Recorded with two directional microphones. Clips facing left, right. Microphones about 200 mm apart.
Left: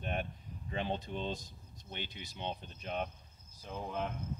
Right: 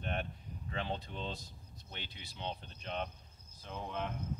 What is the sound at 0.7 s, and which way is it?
Speech, 20° left (ahead or behind).